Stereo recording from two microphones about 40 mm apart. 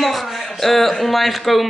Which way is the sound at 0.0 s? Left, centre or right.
Centre.